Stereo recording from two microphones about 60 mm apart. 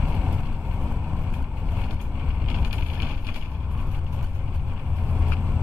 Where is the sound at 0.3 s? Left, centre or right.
Centre.